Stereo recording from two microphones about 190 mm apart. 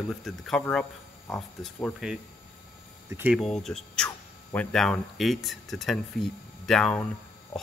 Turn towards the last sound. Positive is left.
turn(degrees=5)  # may be behind; listen again after turning